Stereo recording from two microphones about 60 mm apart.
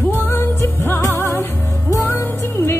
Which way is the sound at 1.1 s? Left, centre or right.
Left.